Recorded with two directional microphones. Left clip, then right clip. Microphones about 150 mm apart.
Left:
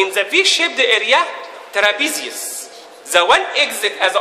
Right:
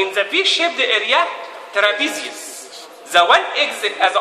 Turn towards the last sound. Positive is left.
turn(degrees=65)  # may be behind; listen again after turning